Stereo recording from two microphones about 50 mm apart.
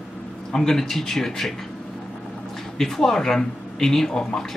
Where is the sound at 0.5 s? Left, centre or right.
Centre.